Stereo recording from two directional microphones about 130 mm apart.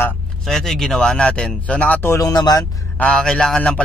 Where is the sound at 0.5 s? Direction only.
Centre (ahead or behind).